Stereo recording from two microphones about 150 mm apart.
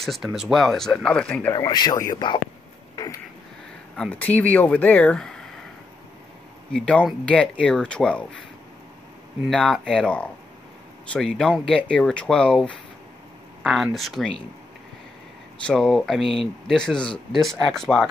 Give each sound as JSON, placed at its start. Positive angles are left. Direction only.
{"t": 0.0, "sound": "speech", "side_deg": 0}
{"t": 1.5, "sound": "speech", "side_deg": 25}
{"t": 3.9, "sound": "speech", "side_deg": 5}
{"t": 6.7, "sound": "speech", "side_deg": 5}
{"t": 9.5, "sound": "speech", "side_deg": 0}
{"t": 13.6, "sound": "a sound", "side_deg": 0}
{"t": 13.9, "sound": "speech", "side_deg": 0}
{"t": 15.6, "sound": "speech", "side_deg": 0}